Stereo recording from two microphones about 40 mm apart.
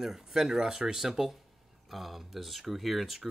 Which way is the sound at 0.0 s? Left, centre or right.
Centre.